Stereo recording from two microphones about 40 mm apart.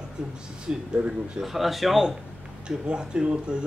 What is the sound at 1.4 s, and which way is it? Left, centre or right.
Speech, centre.